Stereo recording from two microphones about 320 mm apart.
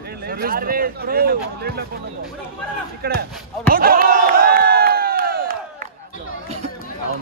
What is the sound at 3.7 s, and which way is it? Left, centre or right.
Crowd, right.